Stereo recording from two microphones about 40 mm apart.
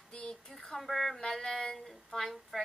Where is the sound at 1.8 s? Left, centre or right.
Centre.